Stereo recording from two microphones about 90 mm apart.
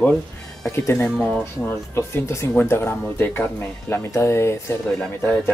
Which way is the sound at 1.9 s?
30° left (ahead or behind).